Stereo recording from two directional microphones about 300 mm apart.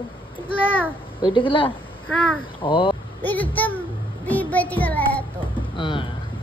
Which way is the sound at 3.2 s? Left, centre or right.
Centre.